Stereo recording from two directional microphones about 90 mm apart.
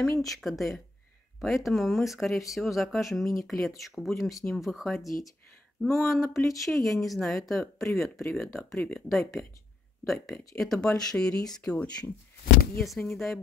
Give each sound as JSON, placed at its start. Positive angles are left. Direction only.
{"t": 0.0, "sound": "speech", "side_deg": 0}
{"t": 8.7, "sound": "speech", "side_deg": 15}
{"t": 10.0, "sound": "speech", "side_deg": 5}
{"t": 13.0, "sound": "speech", "side_deg": 5}